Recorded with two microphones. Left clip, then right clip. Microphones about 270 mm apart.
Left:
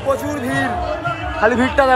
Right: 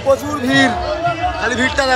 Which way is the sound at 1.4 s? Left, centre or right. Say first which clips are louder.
Left 5 dB; centre.